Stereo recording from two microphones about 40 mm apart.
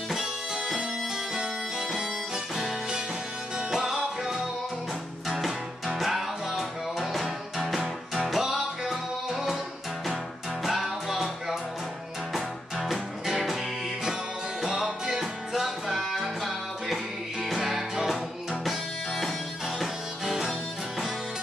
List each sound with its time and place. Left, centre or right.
0.1 s music: centre
3.7 s music: centre
5.9 s music: centre
8.4 s music: centre
10.6 s music: centre
14.6 s music: centre
18.6 s music: centre